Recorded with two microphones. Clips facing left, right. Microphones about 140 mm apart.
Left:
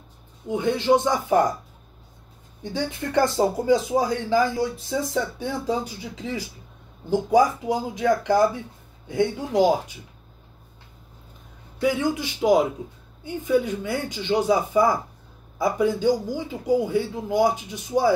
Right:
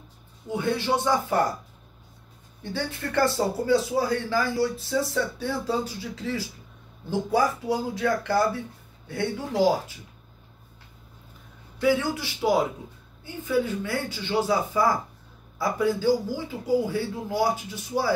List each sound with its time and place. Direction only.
0.5 s speech: 20° left (ahead or behind)
2.6 s speech: 15° left (ahead or behind)
11.8 s a man's voice: 20° left (ahead or behind)